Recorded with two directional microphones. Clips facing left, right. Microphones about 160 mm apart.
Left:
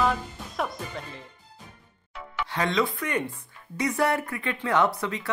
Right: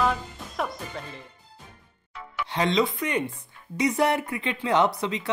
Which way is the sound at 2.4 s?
20° right (ahead or behind).